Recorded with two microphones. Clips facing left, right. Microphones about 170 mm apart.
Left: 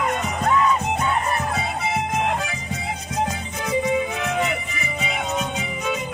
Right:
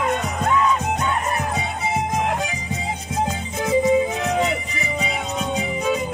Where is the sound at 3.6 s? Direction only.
25° right (ahead or behind).